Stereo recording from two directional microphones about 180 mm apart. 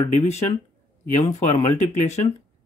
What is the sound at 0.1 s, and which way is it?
Speech, 35° left (ahead or behind).